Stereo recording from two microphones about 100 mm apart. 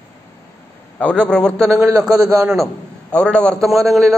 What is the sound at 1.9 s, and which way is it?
Speech, 35° right (ahead or behind).